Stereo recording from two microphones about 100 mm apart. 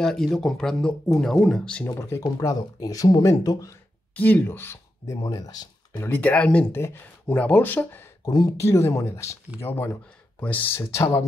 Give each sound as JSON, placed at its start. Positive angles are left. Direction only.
{"t": 0.0, "sound": "speech", "side_deg": 5}
{"t": 1.9, "sound": "speech", "side_deg": 30}
{"t": 4.1, "sound": "speech", "side_deg": 15}
{"t": 5.2, "sound": "speech", "side_deg": 40}
{"t": 5.9, "sound": "speech", "side_deg": 20}
{"t": 6.7, "sound": "speech", "side_deg": 25}
{"t": 8.3, "sound": "speech", "side_deg": 40}
{"t": 8.5, "sound": "speech", "side_deg": 25}
{"t": 10.4, "sound": "speech", "side_deg": 15}
{"t": 10.8, "sound": "speech", "side_deg": 30}